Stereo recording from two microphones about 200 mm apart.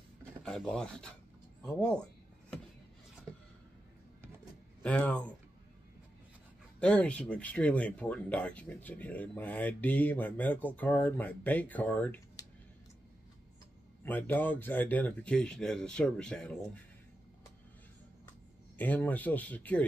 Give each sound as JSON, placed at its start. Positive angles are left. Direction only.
{"t": 0.4, "sound": "speech", "side_deg": 5}
{"t": 4.8, "sound": "speech", "side_deg": 5}
{"t": 6.8, "sound": "speech", "side_deg": 5}
{"t": 12.4, "sound": "a sound", "side_deg": 20}
{"t": 14.0, "sound": "speech", "side_deg": 10}
{"t": 18.8, "sound": "speech", "side_deg": 10}